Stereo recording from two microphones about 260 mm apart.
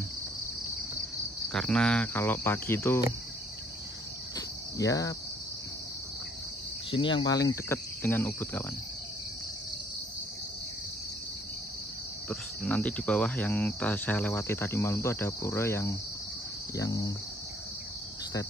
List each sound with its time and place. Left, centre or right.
1.5 s speech: centre
4.4 s cricket: centre
6.9 s speech: centre
12.3 s speech: centre